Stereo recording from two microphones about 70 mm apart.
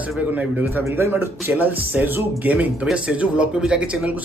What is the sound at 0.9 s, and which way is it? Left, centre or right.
Speech, right.